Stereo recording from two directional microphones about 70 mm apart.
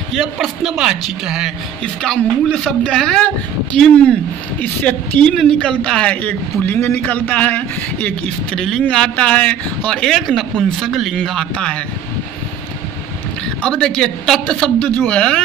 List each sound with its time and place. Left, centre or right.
0.1 s speech: centre
2.0 s a woman's voice: centre
6.2 s a man's voice: left
8.5 s a woman's voice: centre
10.0 s speech: centre
11.5 s a woman's voice: centre
13.6 s a woman's voice: centre